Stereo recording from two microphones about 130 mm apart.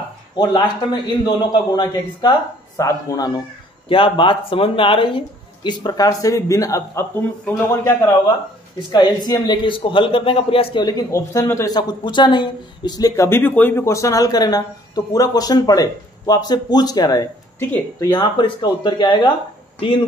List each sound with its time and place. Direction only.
0.4 s speech: 30° left (ahead or behind)
3.9 s speech: 40° left (ahead or behind); by 8.2 s 20° left (ahead or behind)
8.9 s speech: 30° left (ahead or behind)
11.7 s speech: 35° left (ahead or behind)